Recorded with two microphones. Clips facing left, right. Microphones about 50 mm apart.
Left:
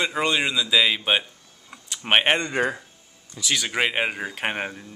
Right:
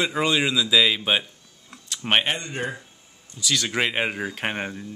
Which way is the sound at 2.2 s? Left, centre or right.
Left.